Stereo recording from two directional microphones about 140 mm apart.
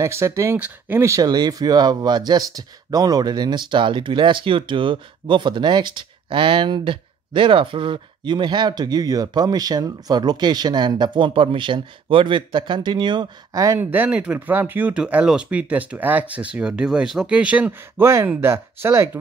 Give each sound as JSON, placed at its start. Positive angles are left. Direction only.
{"t": 0.0, "sound": "speech", "side_deg": -20}
{"t": 13.8, "sound": "speech", "side_deg": -10}